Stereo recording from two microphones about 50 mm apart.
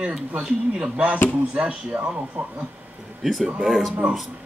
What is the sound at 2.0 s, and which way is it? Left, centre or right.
Speech, right.